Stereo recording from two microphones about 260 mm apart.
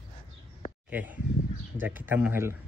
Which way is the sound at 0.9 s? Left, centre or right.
Centre.